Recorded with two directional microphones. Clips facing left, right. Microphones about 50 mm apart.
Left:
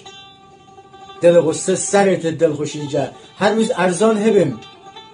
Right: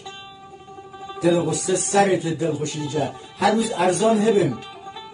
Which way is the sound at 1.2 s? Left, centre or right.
Left.